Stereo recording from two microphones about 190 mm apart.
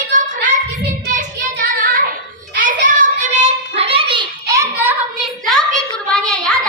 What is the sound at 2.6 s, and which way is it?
Child singing, 45° right (ahead or behind).